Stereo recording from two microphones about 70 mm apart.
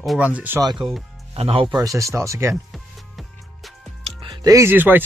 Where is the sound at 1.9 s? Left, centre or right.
Right.